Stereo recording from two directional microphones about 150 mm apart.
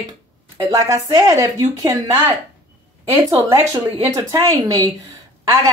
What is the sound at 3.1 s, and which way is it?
Speech, 20° right (ahead or behind).